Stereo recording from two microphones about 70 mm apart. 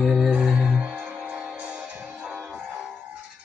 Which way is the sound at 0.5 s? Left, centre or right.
Centre.